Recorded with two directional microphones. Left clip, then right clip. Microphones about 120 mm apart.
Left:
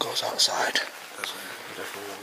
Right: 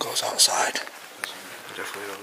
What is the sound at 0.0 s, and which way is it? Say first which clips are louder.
Speech: right 2 dB; 5° right (ahead or behind).